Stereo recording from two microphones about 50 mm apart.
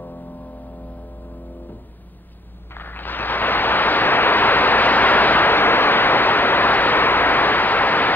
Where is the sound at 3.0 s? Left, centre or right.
Left.